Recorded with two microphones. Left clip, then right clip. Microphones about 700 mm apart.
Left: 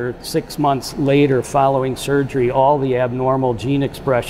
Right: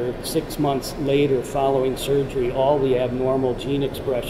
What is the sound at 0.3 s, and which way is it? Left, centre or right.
Speech, left.